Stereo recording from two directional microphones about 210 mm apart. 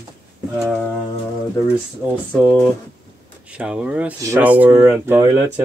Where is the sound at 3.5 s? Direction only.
5° right (ahead or behind).